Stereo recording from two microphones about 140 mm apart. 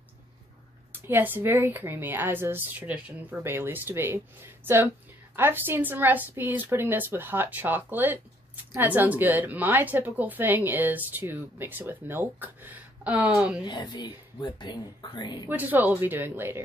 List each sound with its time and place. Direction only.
1.0 s a woman's voice: 15° right (ahead or behind)
13.7 s speech: 30° left (ahead or behind)
15.4 s a woman's voice: 10° right (ahead or behind)